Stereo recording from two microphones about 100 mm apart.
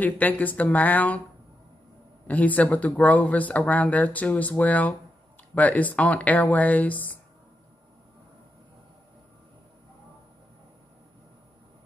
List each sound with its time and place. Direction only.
0.0 s speech: 15° left (ahead or behind)
2.2 s speech: 15° left (ahead or behind)